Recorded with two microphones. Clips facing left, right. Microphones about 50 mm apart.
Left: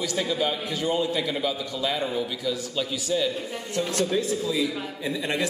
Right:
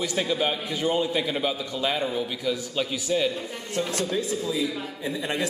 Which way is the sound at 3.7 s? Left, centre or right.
Right.